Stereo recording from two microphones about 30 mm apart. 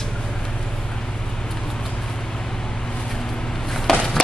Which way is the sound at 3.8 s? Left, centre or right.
Centre.